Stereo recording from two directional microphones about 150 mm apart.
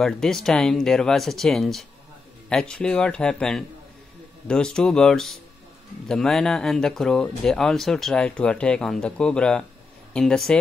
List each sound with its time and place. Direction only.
0.0 s speech: 5° left (ahead or behind)